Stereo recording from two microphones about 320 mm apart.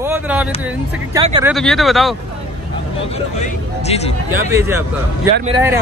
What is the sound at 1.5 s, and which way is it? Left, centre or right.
Speech, centre.